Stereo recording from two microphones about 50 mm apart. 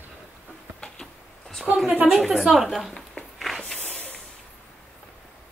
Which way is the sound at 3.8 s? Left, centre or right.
Left.